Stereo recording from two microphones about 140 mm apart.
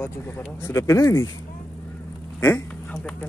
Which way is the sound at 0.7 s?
20° left (ahead or behind).